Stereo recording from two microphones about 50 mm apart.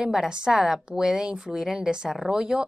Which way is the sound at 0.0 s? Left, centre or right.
Centre.